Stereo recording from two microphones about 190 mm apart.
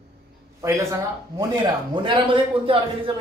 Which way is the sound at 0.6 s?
15° right (ahead or behind).